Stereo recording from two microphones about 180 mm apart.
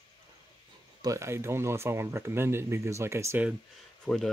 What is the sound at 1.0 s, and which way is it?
Speech, 15° right (ahead or behind).